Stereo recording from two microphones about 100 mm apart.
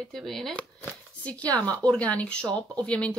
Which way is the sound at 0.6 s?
10° left (ahead or behind).